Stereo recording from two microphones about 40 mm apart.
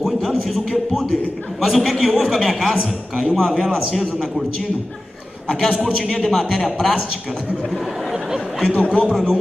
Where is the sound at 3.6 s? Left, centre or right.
Centre.